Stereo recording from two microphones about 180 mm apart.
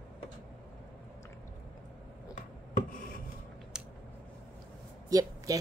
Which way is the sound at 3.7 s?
5° right (ahead or behind).